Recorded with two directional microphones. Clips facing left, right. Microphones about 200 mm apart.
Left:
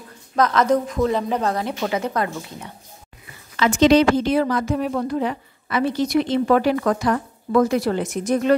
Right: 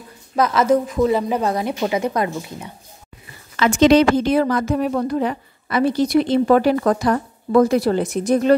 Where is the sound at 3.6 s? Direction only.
55° right (ahead or behind).